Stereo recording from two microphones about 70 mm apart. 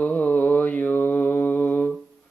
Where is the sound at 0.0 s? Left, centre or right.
Left.